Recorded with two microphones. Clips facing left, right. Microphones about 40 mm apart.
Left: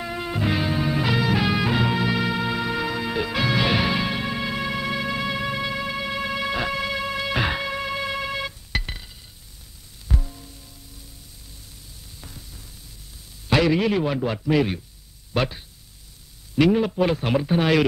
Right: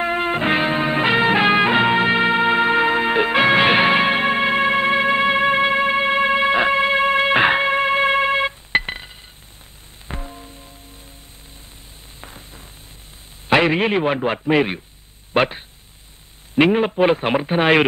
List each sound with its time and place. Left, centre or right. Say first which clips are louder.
0.0 s music: right 7 dB; right
12.2 s a sound: right 6 dB; right
13.5 s a man's voice: right 4 dB; right